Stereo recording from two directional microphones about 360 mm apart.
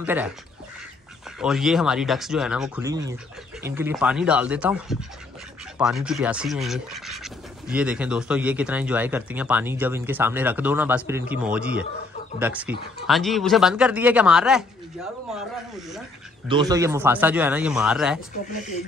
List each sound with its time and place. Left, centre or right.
0.0 s speech: centre
1.4 s speech: centre
16.4 s speech: centre